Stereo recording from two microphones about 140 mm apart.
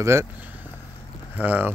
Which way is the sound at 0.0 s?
20° right (ahead or behind).